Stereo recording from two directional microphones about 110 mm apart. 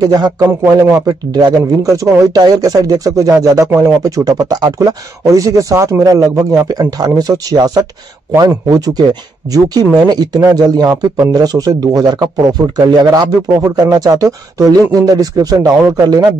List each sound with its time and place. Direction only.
0.0 s speech: 35° right (ahead or behind)
0.5 s speech: 25° right (ahead or behind)